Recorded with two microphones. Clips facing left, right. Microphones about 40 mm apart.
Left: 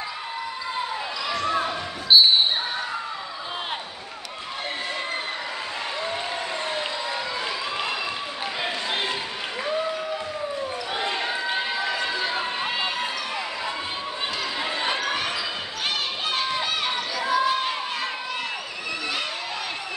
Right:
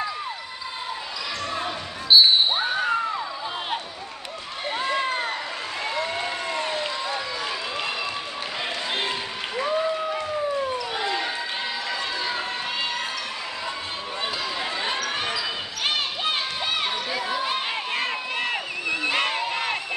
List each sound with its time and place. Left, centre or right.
2.1 s basketball bounce: centre
9.6 s applause: centre
11.0 s basketball bounce: left
11.2 s run: centre
17.3 s crowd: right
19.1 s a sound: right